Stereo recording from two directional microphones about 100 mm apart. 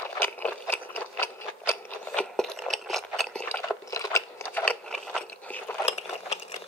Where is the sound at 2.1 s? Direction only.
5° left (ahead or behind).